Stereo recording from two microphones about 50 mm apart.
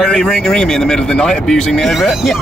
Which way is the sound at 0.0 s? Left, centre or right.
Centre.